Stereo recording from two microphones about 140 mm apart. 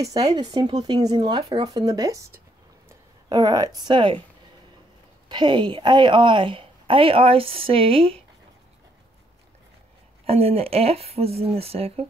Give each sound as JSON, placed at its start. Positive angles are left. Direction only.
{"t": 0.3, "sound": "speech", "side_deg": -30}
{"t": 3.3, "sound": "a woman's voice", "side_deg": -30}
{"t": 5.3, "sound": "a woman's voice", "side_deg": -35}
{"t": 10.2, "sound": "speech", "side_deg": -45}